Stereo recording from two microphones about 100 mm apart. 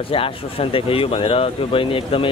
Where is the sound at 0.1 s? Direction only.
65° left (ahead or behind).